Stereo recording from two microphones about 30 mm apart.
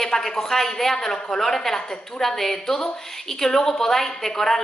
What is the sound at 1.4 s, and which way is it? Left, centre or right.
A woman's voice, centre.